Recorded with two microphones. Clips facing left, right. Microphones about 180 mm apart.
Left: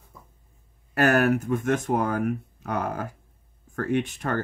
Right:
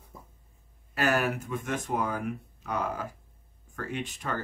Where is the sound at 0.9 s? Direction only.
55° left (ahead or behind).